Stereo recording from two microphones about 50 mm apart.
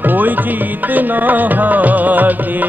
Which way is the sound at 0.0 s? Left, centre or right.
Right.